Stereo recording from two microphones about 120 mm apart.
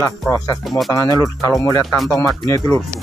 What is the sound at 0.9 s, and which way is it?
Speech, 25° left (ahead or behind).